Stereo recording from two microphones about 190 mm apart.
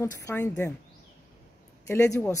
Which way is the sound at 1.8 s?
15° left (ahead or behind).